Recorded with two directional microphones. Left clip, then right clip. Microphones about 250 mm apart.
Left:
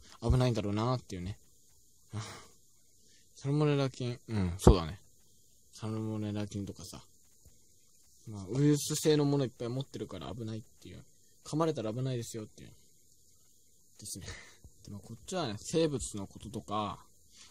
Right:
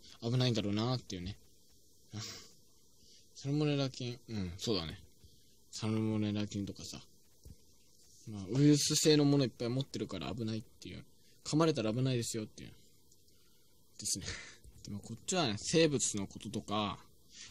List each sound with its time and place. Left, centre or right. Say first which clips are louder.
0.2 s speech: left 3 dB; centre
2.0 s a sound: left 1 dB; left
3.3 s speech: left 4 dB; left
5.7 s speech: right 3 dB; centre
8.3 s speech: right 1 dB; centre
13.9 s speech: right 6 dB; centre